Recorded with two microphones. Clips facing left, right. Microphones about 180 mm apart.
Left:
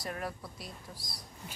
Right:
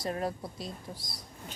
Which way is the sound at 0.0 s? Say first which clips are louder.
Right 6 dB; 25° right (ahead or behind).